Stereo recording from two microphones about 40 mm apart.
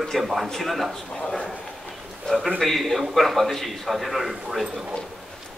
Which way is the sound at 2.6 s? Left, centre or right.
Centre.